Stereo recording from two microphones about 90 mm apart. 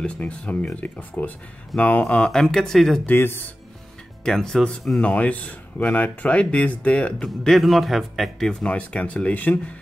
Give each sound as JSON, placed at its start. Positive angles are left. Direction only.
{"t": 0.0, "sound": "speech", "side_deg": 15}
{"t": 3.1, "sound": "speech", "side_deg": 25}
{"t": 4.2, "sound": "speech", "side_deg": 5}
{"t": 8.6, "sound": "speech", "side_deg": 15}